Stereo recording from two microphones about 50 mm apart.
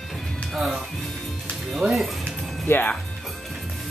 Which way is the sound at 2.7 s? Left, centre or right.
Left.